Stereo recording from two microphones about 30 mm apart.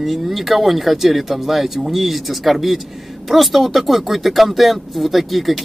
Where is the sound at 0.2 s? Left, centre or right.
Centre.